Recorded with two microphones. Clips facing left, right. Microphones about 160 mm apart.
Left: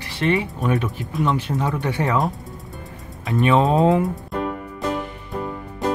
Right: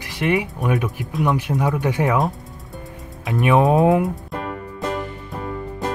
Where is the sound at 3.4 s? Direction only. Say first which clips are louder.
Right 1 dB; 15° right (ahead or behind).